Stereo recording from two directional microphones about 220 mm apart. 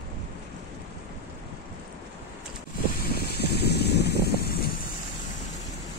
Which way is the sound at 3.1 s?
45° left (ahead or behind).